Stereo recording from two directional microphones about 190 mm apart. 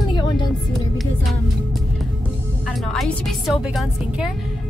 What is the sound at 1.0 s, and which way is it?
A woman's voice, centre (ahead or behind).